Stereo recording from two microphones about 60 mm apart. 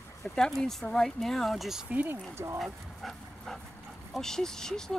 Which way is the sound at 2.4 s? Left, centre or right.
Right.